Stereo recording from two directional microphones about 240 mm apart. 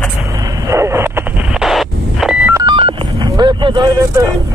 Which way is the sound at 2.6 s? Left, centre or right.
Centre.